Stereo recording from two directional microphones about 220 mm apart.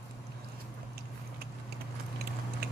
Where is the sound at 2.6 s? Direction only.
45° right (ahead or behind).